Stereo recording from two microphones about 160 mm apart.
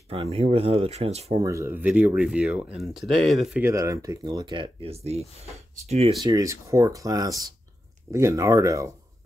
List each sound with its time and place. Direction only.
0.1 s speech: 35° right (ahead or behind)
1.4 s speech: 20° right (ahead or behind); by 3.6 s centre (ahead or behind)
3.6 s speech: 20° right (ahead or behind); by 6.1 s 40° right (ahead or behind)
6.2 s speech: 20° right (ahead or behind)